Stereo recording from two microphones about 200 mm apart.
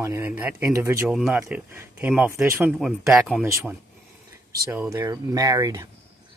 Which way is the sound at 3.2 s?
Centre (ahead or behind).